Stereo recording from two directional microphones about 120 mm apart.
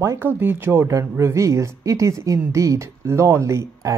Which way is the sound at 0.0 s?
20° right (ahead or behind).